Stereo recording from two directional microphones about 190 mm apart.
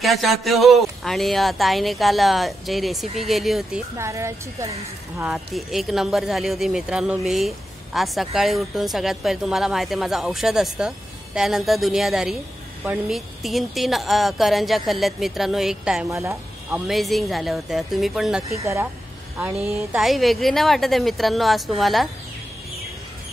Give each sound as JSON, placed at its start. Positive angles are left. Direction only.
{"t": 0.0, "sound": "speech", "side_deg": 0}
{"t": 3.9, "sound": "speech", "side_deg": -15}
{"t": 5.2, "sound": "speech", "side_deg": 0}
{"t": 16.8, "sound": "speech", "side_deg": 0}
{"t": 18.6, "sound": "speech", "side_deg": -15}
{"t": 19.3, "sound": "speech", "side_deg": -5}